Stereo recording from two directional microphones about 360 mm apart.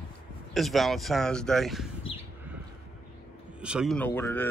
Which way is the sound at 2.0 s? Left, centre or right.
Centre.